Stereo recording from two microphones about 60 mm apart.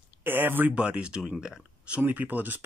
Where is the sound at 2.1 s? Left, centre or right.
Right.